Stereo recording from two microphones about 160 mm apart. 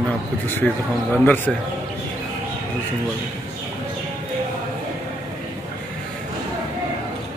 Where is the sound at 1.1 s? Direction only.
10° left (ahead or behind).